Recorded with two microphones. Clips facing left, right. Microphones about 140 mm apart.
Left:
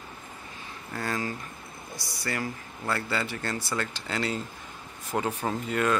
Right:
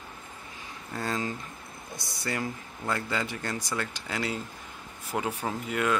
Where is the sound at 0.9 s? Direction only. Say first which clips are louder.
Even; 20° right (ahead or behind).